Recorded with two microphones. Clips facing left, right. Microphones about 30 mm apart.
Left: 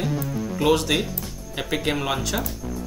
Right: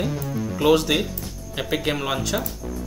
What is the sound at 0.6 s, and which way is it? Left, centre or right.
Speech, centre.